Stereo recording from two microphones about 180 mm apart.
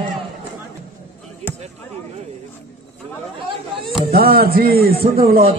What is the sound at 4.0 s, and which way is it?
A man's voice, 55° right (ahead or behind).